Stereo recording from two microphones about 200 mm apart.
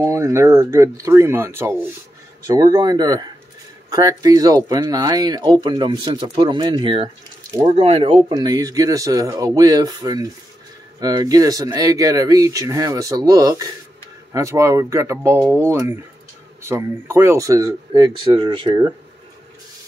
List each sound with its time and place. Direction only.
0.0 s speech: 15° right (ahead or behind)